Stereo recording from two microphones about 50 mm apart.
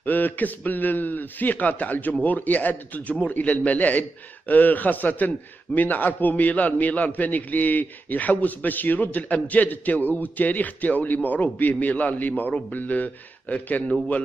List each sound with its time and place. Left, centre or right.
0.0 s a man's voice: left